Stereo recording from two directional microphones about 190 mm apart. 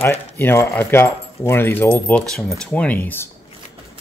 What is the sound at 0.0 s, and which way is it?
Speech, 10° left (ahead or behind).